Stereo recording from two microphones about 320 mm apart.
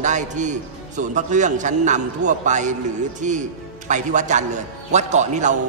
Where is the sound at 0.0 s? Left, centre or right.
Right.